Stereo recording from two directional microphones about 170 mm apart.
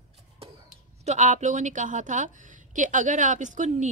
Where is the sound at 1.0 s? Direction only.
40° right (ahead or behind).